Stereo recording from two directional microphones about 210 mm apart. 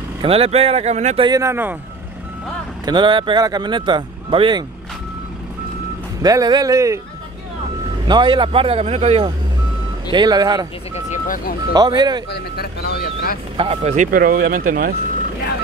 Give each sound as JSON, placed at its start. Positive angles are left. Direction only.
{"t": 0.2, "sound": "speech", "side_deg": -25}
{"t": 2.8, "sound": "speech", "side_deg": -20}
{"t": 6.2, "sound": "speech", "side_deg": -20}
{"t": 8.1, "sound": "speech", "side_deg": -20}
{"t": 10.1, "sound": "speech", "side_deg": -20}
{"t": 11.1, "sound": "vehicle", "side_deg": 40}
{"t": 11.7, "sound": "speech", "side_deg": -20}
{"t": 12.3, "sound": "speech", "side_deg": 50}
{"t": 13.6, "sound": "speech", "side_deg": -30}